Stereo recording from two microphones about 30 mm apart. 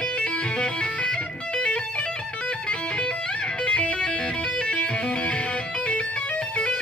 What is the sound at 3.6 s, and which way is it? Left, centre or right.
Music, left.